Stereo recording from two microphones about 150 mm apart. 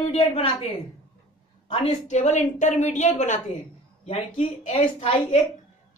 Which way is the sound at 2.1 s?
50° left (ahead or behind).